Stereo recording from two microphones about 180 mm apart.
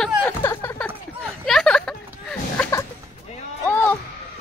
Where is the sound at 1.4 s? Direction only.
Centre (ahead or behind).